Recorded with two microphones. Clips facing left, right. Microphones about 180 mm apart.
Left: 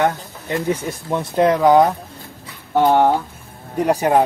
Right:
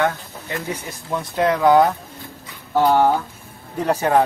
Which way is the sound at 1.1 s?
20° left (ahead or behind).